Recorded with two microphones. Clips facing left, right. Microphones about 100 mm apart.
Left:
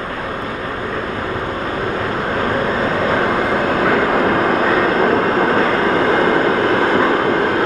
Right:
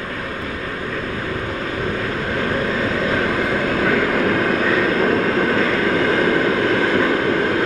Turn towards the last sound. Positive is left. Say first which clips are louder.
# left 3 dB
turn(degrees=35)  # may be behind; listen again after turning